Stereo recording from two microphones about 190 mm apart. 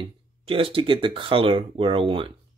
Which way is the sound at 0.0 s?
30° right (ahead or behind).